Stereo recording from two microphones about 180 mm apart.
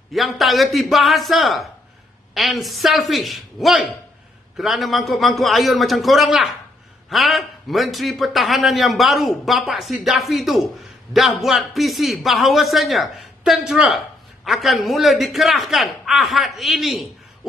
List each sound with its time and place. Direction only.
0.1 s a man's voice: centre (ahead or behind)